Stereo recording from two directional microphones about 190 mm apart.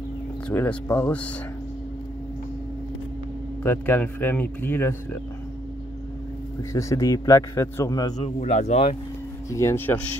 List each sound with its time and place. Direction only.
0.5 s a man's voice: 10° left (ahead or behind)
3.6 s a man's voice: 10° left (ahead or behind)
6.7 s a man's voice: 15° left (ahead or behind)
8.2 s speech: 40° left (ahead or behind)
9.5 s a man's voice: 15° left (ahead or behind)